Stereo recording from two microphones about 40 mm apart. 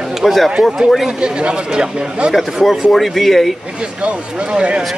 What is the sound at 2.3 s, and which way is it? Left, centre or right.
Speech, centre.